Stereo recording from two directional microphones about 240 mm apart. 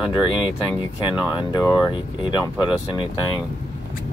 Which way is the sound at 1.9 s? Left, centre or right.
Centre.